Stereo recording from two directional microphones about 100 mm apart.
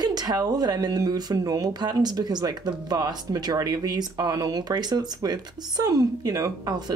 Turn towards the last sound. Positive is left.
turn(degrees=-40)  # may be behind; listen again after turning